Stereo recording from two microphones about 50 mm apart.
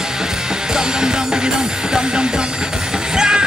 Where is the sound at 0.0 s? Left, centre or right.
Centre.